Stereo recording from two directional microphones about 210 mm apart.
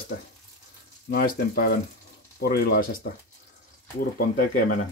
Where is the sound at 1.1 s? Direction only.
45° left (ahead or behind).